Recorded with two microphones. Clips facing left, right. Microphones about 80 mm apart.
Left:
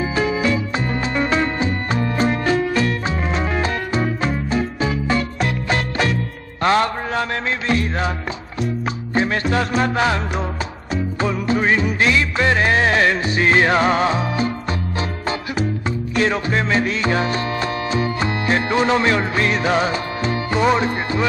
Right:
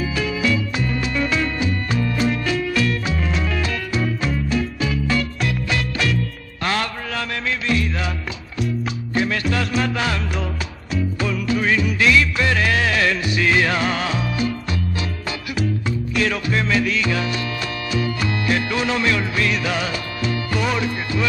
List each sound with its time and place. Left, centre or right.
0.0 s music: left
9.1 s music: left
11.1 s music: left
16.2 s music: left